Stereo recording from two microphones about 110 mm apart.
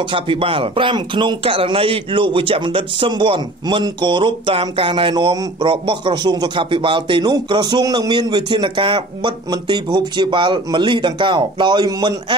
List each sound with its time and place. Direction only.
0.0 s speech: 50° right (ahead or behind)